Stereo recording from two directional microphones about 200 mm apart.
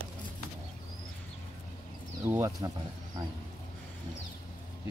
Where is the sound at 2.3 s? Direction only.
15° right (ahead or behind).